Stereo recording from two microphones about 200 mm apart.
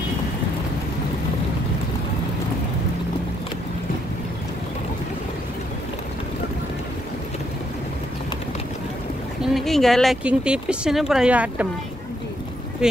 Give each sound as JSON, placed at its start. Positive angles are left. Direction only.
{"t": 9.4, "sound": "speech", "side_deg": 0}